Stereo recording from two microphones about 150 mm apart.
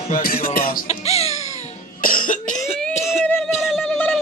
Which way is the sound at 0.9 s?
45° left (ahead or behind).